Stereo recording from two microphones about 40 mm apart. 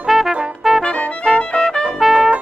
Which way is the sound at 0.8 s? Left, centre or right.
Left.